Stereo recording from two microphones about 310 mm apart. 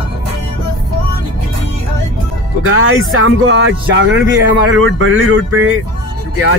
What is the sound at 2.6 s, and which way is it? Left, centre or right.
Speech, right.